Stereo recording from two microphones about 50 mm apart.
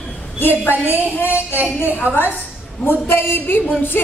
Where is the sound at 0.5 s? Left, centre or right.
Right.